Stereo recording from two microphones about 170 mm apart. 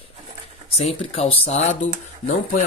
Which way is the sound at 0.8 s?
35° left (ahead or behind).